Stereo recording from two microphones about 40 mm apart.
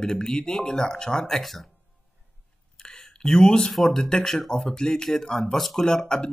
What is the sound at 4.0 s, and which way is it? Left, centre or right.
Speech, centre.